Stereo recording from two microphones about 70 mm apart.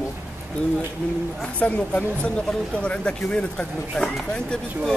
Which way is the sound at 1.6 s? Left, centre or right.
Centre.